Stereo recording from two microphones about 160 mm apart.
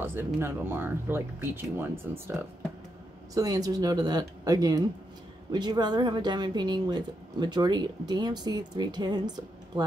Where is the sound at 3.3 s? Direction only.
25° right (ahead or behind).